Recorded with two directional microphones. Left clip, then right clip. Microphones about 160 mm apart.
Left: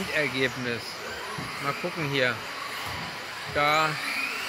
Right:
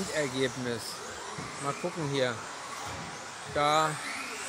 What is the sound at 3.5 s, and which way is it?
Speech, 20° right (ahead or behind).